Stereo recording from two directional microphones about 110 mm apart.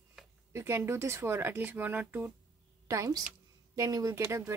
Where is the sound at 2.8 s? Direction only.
30° right (ahead or behind).